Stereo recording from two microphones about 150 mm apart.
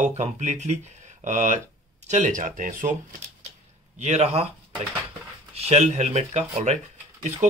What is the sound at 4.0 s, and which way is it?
Speech, 45° right (ahead or behind).